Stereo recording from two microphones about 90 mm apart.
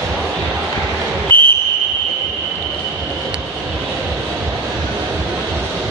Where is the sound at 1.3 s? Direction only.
20° left (ahead or behind).